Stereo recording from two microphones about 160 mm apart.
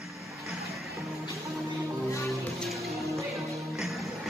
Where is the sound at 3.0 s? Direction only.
20° right (ahead or behind).